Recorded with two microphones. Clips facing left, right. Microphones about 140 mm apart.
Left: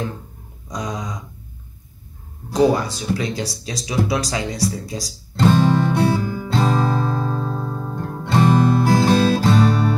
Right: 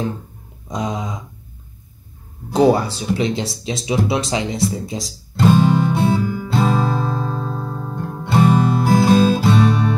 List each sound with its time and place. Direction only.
0.7 s a sound: 25° right (ahead or behind)
2.5 s speech: 30° right (ahead or behind)
5.3 s music: 10° right (ahead or behind)
7.4 s music: centre (ahead or behind)
8.0 s music: 15° right (ahead or behind)